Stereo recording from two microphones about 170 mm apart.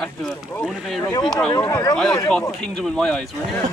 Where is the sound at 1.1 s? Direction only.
20° left (ahead or behind).